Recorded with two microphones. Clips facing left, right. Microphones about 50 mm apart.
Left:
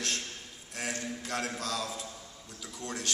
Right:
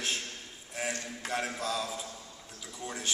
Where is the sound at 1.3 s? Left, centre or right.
Centre.